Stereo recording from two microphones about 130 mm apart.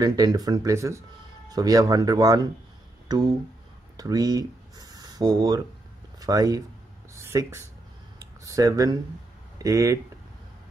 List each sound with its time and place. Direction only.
0.0 s speech: 30° right (ahead or behind)
8.5 s speech: 25° right (ahead or behind)